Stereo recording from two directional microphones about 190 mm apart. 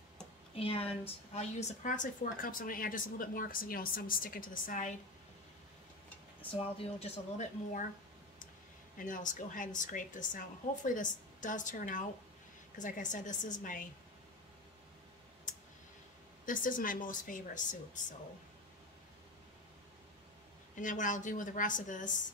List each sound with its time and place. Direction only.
0.6 s a woman's voice: 30° left (ahead or behind)
6.5 s speech: 30° left (ahead or behind)
8.9 s a woman's voice: 45° left (ahead or behind)
16.4 s a woman's voice: 45° left (ahead or behind)
20.7 s a woman's voice: 40° left (ahead or behind)